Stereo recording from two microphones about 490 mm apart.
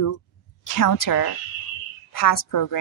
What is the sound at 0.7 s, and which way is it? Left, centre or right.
A woman's voice, left.